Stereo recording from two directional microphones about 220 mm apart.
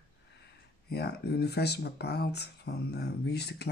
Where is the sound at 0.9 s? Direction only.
50° left (ahead or behind).